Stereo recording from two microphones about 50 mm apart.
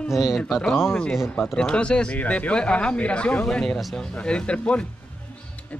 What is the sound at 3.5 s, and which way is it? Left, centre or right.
Speech, centre.